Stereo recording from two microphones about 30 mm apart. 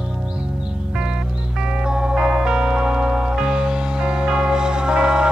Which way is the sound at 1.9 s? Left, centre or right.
Right.